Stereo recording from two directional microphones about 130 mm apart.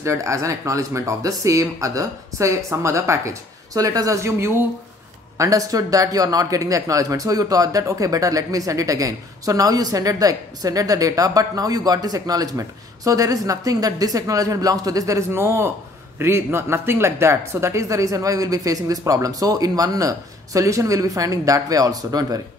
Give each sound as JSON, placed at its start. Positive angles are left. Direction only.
{"t": 0.0, "sound": "speech", "side_deg": -25}